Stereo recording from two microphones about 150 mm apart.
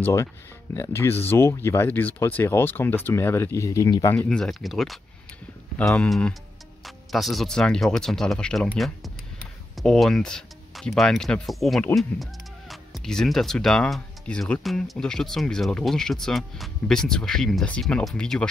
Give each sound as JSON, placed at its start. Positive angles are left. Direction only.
{"t": 0.0, "sound": "speech", "side_deg": 20}